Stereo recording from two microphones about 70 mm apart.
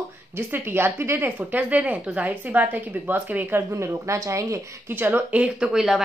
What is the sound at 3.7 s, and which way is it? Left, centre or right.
Speech, right.